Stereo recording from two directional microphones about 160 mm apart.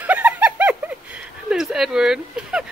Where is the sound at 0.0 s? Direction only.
10° right (ahead or behind).